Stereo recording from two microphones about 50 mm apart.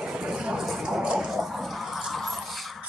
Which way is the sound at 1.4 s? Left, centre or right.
Centre.